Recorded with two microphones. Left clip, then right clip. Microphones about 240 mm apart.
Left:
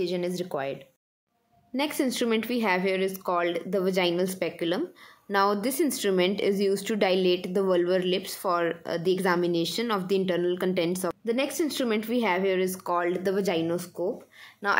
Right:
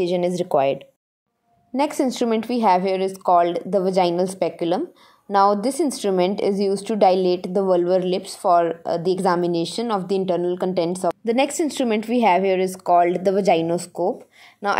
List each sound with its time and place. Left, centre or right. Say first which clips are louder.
0.0 s speech: right 8 dB; centre
1.8 s a woman's voice: right 6 dB; centre
11.2 s speech: right 6 dB; right